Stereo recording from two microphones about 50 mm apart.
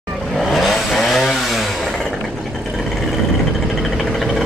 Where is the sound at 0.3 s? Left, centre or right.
Centre.